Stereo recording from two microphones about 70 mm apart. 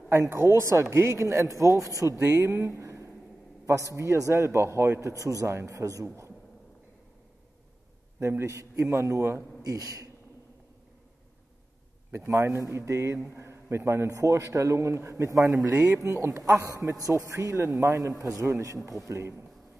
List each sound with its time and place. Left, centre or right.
0.1 s a man's voice: right
2.1 s a man's voice: right
8.2 s a man's voice: right
12.3 s a man's voice: right
19.0 s a man's voice: right